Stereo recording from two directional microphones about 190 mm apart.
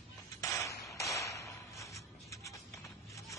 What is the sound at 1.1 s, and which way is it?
Music, 15° left (ahead or behind).